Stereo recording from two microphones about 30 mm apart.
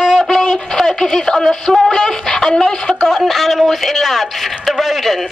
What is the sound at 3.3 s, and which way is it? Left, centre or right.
A woman's voice, centre.